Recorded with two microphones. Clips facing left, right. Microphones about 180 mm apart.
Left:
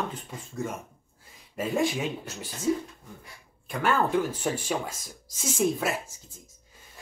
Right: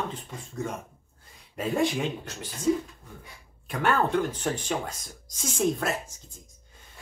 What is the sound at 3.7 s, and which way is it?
Speech, centre (ahead or behind).